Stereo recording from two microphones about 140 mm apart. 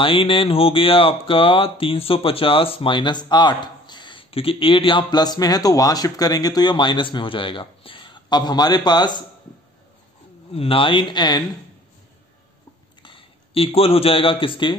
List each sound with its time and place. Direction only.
0.0 s speech: 40° left (ahead or behind)
10.5 s speech: 45° left (ahead or behind)
13.0 s a man's voice: 40° left (ahead or behind)